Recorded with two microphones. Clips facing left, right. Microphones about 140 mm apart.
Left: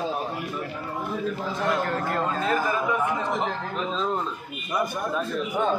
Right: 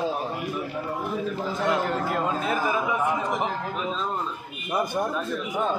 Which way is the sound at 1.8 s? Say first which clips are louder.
Even; 5° right (ahead or behind).